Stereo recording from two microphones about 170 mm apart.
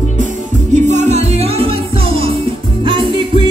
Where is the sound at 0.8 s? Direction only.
45° right (ahead or behind).